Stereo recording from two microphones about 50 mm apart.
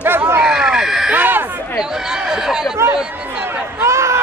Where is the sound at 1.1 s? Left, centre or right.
Right.